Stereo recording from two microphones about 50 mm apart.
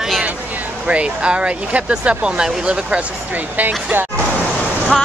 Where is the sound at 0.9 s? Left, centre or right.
Right.